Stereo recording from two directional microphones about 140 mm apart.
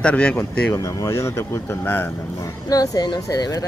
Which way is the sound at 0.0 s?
10° left (ahead or behind).